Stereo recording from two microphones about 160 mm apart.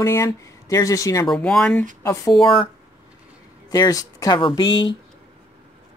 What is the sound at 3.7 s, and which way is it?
Speech, 20° left (ahead or behind).